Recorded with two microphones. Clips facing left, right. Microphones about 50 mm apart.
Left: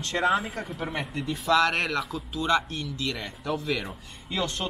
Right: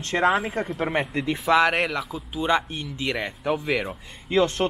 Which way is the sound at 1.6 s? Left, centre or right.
Centre.